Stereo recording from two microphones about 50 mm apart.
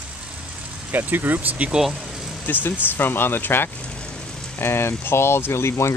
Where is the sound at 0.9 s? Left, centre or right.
Right.